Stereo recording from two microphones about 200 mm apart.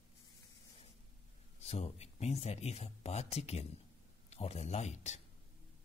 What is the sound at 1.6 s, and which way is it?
Speech, 30° left (ahead or behind).